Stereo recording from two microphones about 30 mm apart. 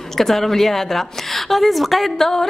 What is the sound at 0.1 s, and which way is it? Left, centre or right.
A woman's voice, centre.